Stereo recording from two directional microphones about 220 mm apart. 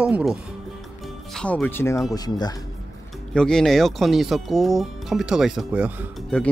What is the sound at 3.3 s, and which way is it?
Speech, 5° left (ahead or behind).